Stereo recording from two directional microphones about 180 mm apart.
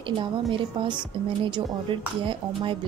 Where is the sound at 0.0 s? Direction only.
25° right (ahead or behind).